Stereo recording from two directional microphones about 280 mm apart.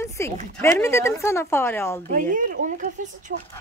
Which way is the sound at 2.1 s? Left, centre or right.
Right.